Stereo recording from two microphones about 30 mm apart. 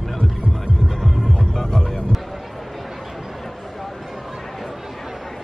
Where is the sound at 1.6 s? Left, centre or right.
Centre.